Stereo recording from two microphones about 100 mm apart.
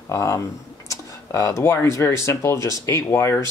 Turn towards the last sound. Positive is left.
turn(degrees=25)  # may be behind; listen again after turning